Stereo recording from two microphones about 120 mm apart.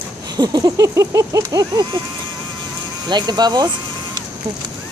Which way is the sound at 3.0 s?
35° right (ahead or behind).